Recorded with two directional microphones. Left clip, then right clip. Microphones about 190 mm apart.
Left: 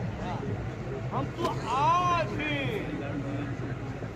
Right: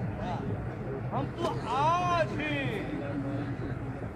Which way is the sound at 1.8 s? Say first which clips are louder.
Left 2 dB; 35° right (ahead or behind).